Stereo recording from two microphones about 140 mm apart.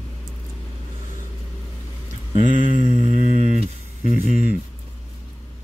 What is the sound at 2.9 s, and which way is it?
Music, 55° right (ahead or behind).